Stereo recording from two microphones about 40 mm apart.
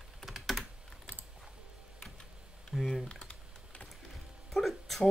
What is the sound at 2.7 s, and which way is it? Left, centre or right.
Typing, centre.